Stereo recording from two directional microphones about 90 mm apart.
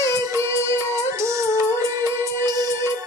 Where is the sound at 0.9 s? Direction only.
35° right (ahead or behind).